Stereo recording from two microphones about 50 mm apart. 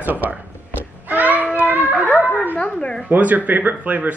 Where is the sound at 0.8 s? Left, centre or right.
Right.